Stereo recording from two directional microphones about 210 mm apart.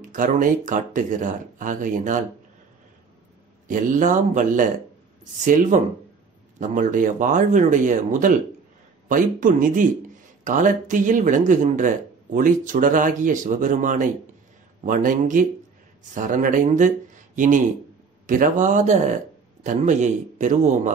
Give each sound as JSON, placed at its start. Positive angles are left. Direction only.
{"t": 0.0, "sound": "speech", "side_deg": -40}
{"t": 3.6, "sound": "speech", "side_deg": -40}
{"t": 18.2, "sound": "speech", "side_deg": -40}